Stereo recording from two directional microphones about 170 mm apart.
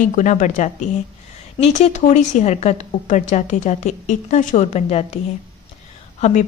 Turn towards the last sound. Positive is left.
turn(degrees=45)  # may be behind; listen again after turning